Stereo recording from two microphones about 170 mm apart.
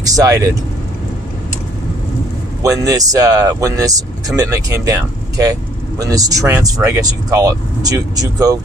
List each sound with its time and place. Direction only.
0.0 s speech: 20° right (ahead or behind)
2.6 s speech: 20° right (ahead or behind)